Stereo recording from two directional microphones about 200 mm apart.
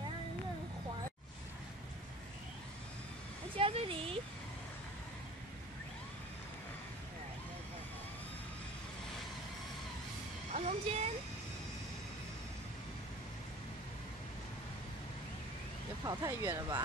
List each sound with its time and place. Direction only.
3.5 s speech: 25° right (ahead or behind)
10.5 s a sound: 30° right (ahead or behind)
16.0 s speech: 20° right (ahead or behind)